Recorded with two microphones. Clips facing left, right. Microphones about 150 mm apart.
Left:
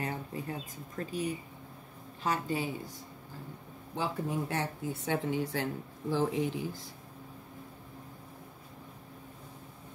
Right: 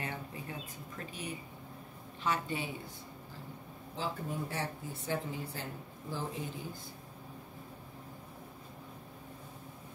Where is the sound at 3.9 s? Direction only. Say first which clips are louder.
Left 5 dB; 80° left.